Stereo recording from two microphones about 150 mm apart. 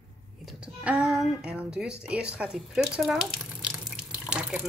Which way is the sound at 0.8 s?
5° right (ahead or behind).